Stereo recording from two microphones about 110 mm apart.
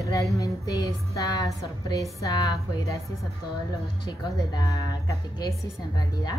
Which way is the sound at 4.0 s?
45° left (ahead or behind).